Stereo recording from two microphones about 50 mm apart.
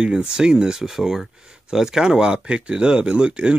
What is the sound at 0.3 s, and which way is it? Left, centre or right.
Speech, centre.